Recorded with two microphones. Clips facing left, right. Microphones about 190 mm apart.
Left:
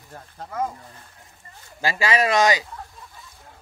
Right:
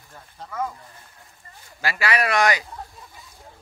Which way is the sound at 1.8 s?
20° left (ahead or behind).